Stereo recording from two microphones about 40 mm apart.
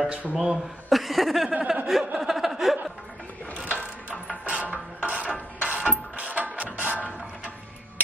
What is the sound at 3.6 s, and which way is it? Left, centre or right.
Mechanisms, right.